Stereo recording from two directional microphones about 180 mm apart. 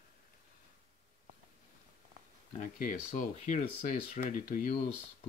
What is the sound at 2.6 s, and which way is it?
Speech, 45° left (ahead or behind).